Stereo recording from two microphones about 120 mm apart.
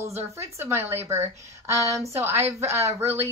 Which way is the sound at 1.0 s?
20° right (ahead or behind).